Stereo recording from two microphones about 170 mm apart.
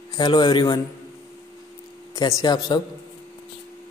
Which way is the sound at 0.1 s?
25° left (ahead or behind).